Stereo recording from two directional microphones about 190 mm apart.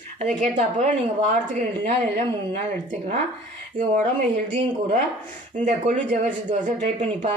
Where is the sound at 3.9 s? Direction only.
40° right (ahead or behind).